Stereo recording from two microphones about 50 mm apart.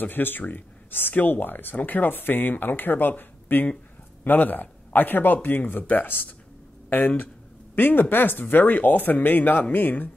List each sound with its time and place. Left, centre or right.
0.0 s speech: left